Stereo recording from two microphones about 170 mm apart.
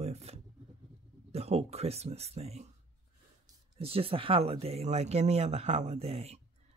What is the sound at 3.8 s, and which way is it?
Speech, 35° right (ahead or behind).